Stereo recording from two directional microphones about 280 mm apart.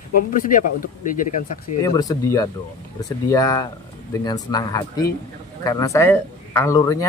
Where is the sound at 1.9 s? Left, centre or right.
Centre.